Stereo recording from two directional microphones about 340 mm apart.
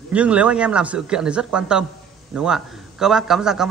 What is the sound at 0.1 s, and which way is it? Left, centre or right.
A man's voice, centre.